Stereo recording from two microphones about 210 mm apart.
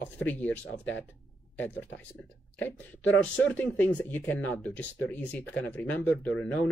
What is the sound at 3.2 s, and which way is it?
Speech, 5° left (ahead or behind).